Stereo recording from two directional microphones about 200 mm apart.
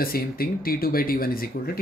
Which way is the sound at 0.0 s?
45° left (ahead or behind).